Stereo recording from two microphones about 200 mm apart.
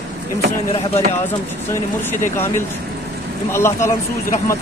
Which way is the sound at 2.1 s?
10° left (ahead or behind).